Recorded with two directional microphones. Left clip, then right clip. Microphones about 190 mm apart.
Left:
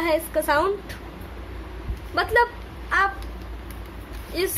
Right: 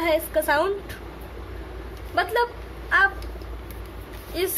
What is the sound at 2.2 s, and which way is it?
Speech, 15° left (ahead or behind).